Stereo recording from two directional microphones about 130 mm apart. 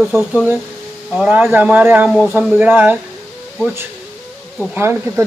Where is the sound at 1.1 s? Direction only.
5° right (ahead or behind).